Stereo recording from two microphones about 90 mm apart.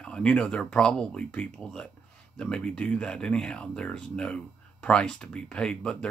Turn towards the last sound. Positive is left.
turn(degrees=10)  # may be behind; listen again after turning